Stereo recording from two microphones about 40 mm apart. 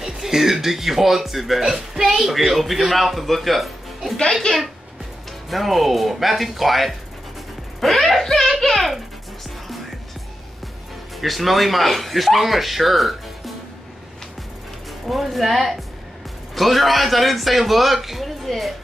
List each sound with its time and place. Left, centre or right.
0.0 s speech: centre
4.5 s a child's voice: left
5.5 s a child's voice: centre
11.1 s speech: centre
15.0 s speech: centre